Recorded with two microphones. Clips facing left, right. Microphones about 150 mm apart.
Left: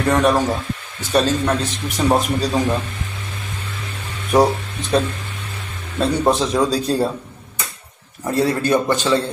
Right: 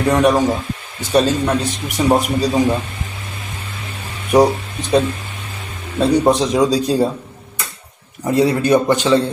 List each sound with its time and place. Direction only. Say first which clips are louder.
0.0 s speech: right 2 dB; 15° right (ahead or behind)
4.3 s speech: right 3 dB; 15° right (ahead or behind)
5.9 s speech: right 4 dB; 15° right (ahead or behind)
8.2 s speech: right 4 dB; 15° right (ahead or behind)